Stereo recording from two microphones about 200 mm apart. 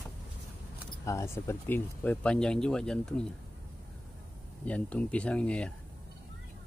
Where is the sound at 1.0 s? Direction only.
15° left (ahead or behind).